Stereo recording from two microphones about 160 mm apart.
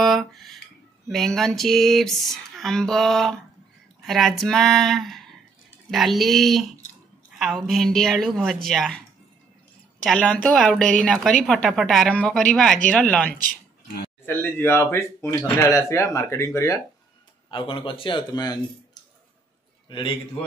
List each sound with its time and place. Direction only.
0.0 s a sound: centre (ahead or behind)
1.0 s a woman's voice: centre (ahead or behind)
10.0 s a woman's voice: 5° left (ahead or behind); by 16.8 s 20° left (ahead or behind)
17.5 s a man's voice: 30° left (ahead or behind)